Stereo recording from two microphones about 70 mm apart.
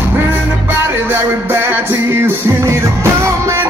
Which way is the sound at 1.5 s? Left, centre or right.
Right.